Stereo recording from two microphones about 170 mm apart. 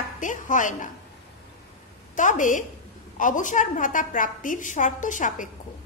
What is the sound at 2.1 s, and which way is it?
A woman's voice, 50° left (ahead or behind).